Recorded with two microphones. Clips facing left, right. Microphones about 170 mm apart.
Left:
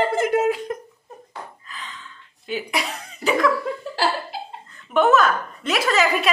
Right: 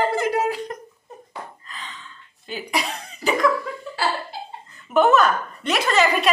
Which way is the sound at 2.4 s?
Centre (ahead or behind).